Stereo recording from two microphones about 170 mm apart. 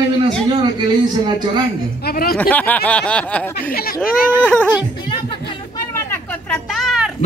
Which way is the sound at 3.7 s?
60° left (ahead or behind).